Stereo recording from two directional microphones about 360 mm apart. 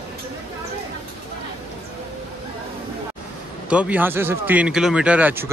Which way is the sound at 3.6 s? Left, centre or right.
Centre.